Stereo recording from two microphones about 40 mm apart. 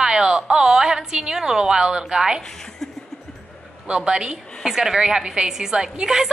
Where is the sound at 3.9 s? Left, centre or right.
Right.